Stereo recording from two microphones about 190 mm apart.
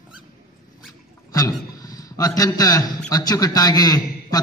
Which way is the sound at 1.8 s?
20° left (ahead or behind).